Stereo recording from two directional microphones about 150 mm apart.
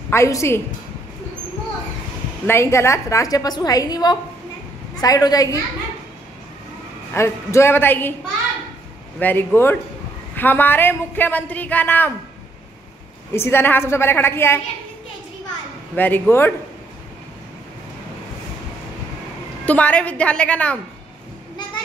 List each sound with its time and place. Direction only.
0.1 s a woman's voice: 20° left (ahead or behind)
2.4 s a woman's voice: 15° left (ahead or behind)
7.2 s speech: 15° left (ahead or behind)
9.2 s speech: 15° left (ahead or behind)
13.3 s speech: 15° left (ahead or behind)
16.0 s speech: 15° left (ahead or behind)
19.6 s speech: 10° left (ahead or behind)